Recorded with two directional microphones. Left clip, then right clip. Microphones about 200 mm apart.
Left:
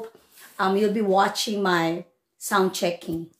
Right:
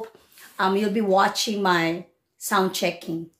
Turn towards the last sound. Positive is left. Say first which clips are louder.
# even
turn(degrees=-5)  # may be behind; listen again after turning